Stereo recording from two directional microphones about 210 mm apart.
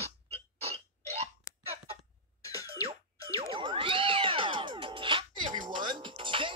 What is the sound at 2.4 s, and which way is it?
Cough, 15° left (ahead or behind).